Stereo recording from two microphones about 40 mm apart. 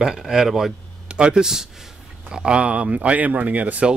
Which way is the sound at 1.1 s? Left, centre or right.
Right.